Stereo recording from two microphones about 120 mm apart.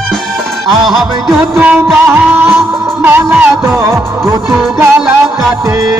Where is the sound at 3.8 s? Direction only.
25° right (ahead or behind).